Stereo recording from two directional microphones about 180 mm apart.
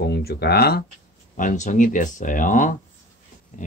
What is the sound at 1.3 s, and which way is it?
Speech, 45° left (ahead or behind).